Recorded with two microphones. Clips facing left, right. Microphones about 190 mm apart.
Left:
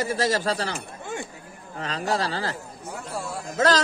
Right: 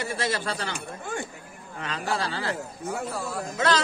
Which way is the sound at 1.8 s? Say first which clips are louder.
Left 3 dB; 40° left (ahead or behind).